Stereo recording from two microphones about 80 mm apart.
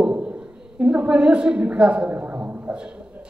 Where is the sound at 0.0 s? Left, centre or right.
Centre.